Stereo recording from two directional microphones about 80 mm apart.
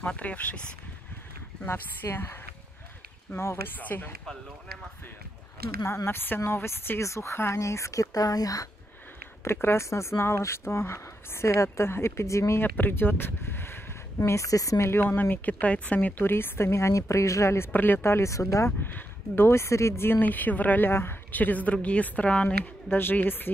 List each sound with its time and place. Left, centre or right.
0.0 s speech: centre
1.7 s speech: left
5.8 s speech: left
6.0 s speech: left
9.4 s speech: left
12.6 s speech: left
14.9 s speech: left
17.7 s speech: left
18.8 s speech: left
22.8 s speech: left